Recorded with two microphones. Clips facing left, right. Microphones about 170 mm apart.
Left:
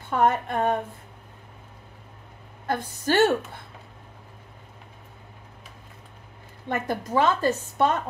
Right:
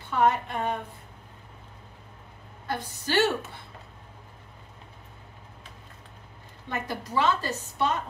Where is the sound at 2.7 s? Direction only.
50° left (ahead or behind).